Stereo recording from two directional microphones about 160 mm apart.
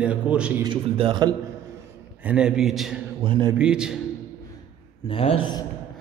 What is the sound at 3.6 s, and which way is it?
Speech, 5° right (ahead or behind).